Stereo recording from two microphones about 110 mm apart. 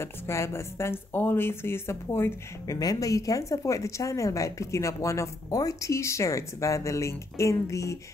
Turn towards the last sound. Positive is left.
turn(degrees=30)  # may be behind; listen again after turning